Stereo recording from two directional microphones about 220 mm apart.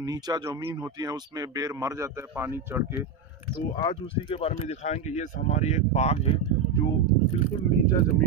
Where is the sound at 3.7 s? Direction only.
25° left (ahead or behind).